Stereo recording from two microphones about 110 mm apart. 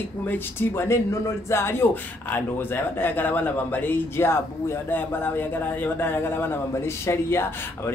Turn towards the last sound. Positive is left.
turn(degrees=20)  # may be behind; listen again after turning